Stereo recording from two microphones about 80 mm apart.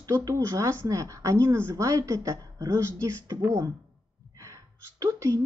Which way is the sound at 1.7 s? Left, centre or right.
Right.